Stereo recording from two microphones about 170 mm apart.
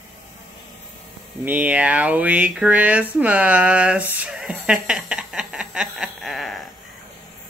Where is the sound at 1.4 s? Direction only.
10° right (ahead or behind).